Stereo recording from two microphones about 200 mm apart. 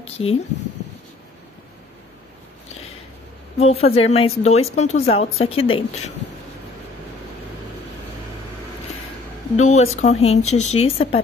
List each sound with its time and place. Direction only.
0.0 s speech: 30° left (ahead or behind)
3.5 s a woman's voice: 30° left (ahead or behind)
9.6 s a woman's voice: 35° left (ahead or behind)